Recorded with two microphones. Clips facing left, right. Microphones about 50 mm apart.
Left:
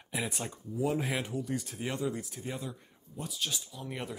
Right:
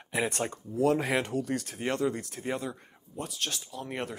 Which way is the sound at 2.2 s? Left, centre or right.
Right.